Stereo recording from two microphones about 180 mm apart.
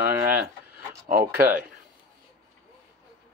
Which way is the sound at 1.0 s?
50° right (ahead or behind).